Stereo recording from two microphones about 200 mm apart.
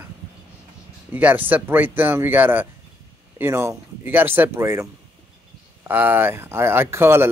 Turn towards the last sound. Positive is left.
turn(degrees=-10)  # may be behind; listen again after turning